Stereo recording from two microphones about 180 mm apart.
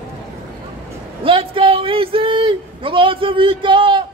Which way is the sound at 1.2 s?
30° right (ahead or behind).